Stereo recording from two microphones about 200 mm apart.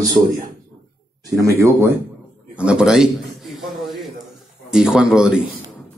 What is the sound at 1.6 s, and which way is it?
Speech, 10° right (ahead or behind).